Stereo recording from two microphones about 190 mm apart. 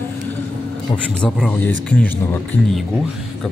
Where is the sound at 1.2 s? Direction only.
10° left (ahead or behind).